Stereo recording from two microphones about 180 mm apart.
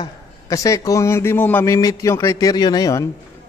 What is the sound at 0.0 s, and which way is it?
A man's voice, 20° left (ahead or behind).